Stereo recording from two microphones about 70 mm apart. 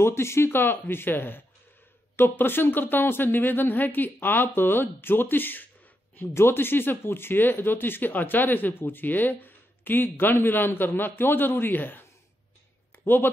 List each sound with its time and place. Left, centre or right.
0.0 s speech: left